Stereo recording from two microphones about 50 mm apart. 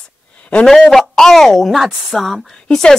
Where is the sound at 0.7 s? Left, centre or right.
Centre.